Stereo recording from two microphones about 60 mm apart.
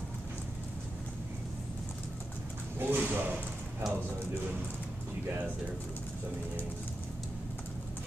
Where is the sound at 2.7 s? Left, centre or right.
Right.